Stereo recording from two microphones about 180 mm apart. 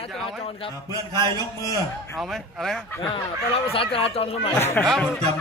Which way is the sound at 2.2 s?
Centre (ahead or behind).